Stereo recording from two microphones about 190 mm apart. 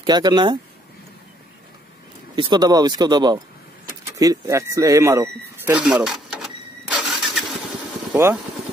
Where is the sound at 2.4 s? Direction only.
20° right (ahead or behind); by 6.5 s 5° right (ahead or behind).